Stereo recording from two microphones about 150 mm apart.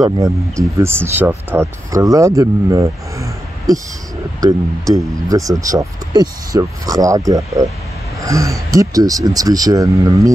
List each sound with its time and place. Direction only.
0.0 s speech: 20° right (ahead or behind)
4.4 s speech: 25° right (ahead or behind)